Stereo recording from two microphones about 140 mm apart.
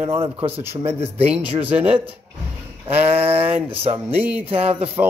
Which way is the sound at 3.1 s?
45° right (ahead or behind).